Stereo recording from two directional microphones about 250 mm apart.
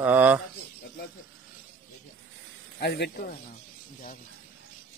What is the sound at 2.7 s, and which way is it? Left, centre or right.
Speech, left.